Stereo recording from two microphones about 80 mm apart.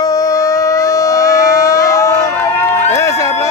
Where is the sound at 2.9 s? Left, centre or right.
Left.